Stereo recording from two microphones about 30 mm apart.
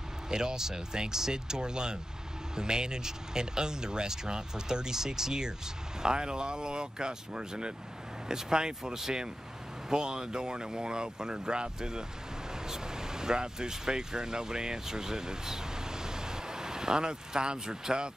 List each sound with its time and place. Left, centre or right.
0.3 s speech: right